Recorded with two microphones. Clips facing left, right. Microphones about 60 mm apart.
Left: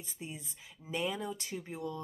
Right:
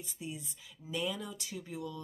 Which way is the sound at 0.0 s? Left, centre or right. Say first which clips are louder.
Right 2 dB; left.